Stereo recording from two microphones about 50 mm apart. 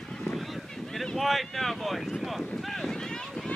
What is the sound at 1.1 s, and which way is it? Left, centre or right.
Speech, centre.